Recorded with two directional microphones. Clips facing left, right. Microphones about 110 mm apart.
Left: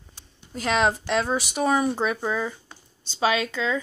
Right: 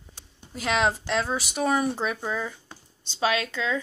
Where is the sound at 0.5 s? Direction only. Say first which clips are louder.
Left 2 dB; centre (ahead or behind).